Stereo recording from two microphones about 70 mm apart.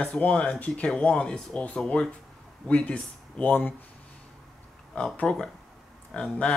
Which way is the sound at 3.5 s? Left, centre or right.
Left.